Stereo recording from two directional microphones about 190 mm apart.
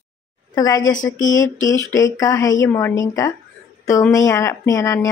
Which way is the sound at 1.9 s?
20° left (ahead or behind).